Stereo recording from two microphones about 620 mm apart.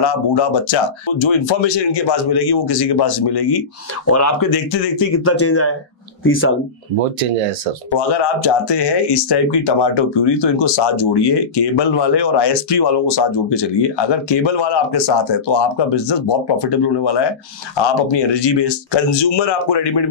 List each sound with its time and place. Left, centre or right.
0.0 s speech: left
4.0 s speech: left
7.0 s speech: right
7.9 s speech: left